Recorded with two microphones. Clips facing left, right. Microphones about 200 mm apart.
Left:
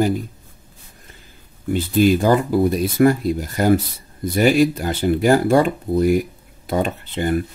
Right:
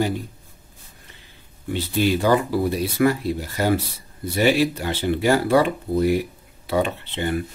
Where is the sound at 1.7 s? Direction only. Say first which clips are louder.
Left 5 dB; 45° left (ahead or behind).